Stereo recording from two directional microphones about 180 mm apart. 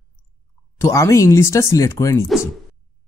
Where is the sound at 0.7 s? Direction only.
15° left (ahead or behind).